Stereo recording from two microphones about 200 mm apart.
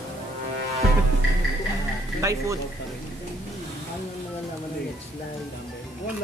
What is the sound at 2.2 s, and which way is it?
Speech, 15° right (ahead or behind).